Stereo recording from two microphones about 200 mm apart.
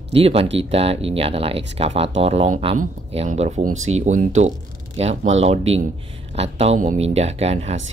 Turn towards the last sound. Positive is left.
turn(degrees=-30)  # may be behind; listen again after turning